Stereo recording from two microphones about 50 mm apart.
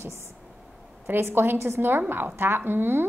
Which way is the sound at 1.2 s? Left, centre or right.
Right.